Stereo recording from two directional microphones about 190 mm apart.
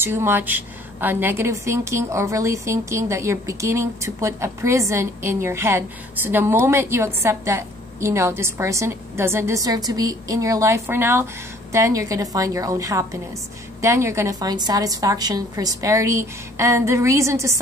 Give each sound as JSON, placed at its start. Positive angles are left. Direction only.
{"t": 0.0, "sound": "a woman's voice", "side_deg": -10}